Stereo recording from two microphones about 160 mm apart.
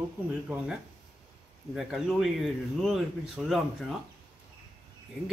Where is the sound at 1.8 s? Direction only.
Centre (ahead or behind).